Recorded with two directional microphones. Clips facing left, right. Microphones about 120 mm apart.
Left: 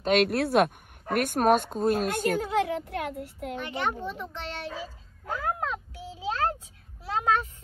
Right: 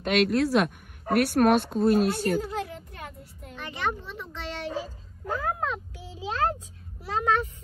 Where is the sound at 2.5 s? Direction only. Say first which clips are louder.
Left 7 dB; 90° left.